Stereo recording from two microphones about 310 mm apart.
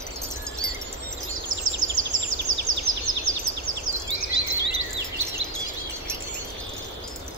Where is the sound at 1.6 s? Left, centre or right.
Right.